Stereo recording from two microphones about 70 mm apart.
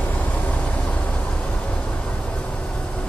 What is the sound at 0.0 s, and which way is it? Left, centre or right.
Vehicle, left.